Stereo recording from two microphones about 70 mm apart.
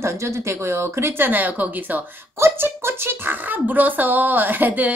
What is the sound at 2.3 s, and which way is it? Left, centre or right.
Speech, right.